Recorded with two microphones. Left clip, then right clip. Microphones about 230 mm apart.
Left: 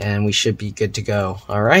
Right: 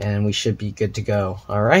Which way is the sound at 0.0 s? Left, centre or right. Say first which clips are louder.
Left 4 dB; centre.